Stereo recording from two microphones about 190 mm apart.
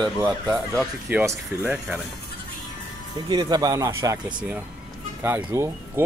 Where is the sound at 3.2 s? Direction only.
20° right (ahead or behind).